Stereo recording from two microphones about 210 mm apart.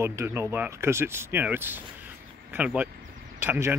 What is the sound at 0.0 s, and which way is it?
Speech, 15° right (ahead or behind).